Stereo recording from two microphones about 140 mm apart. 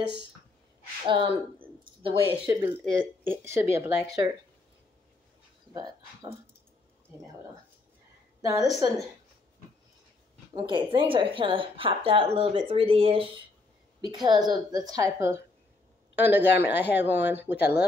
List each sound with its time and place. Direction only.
1.0 s speech: 35° right (ahead or behind)
2.6 s speech: 20° right (ahead or behind)
5.7 s speech: 25° right (ahead or behind)
8.4 s speech: 25° right (ahead or behind)
10.5 s speech: 35° right (ahead or behind)
14.2 s speech: 30° right (ahead or behind); by 17.8 s 15° right (ahead or behind)